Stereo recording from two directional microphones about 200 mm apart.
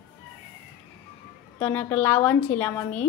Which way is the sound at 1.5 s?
10° left (ahead or behind).